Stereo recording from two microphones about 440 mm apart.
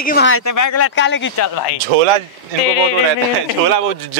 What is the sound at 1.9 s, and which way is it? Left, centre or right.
Speech, right.